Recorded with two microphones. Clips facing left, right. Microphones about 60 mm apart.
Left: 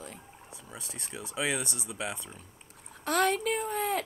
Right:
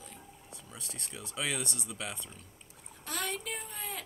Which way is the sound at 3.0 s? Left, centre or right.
Left.